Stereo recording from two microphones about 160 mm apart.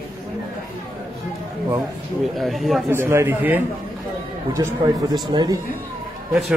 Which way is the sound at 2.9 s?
15° right (ahead or behind).